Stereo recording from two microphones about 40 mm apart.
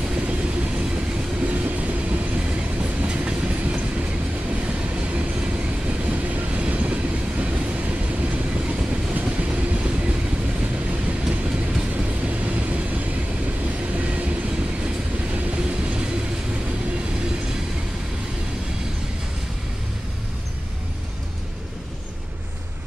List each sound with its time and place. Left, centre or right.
0.0 s train: right
9.7 s vehicle: right
10.9 s train: right
12.6 s vehicle: right
15.3 s train: right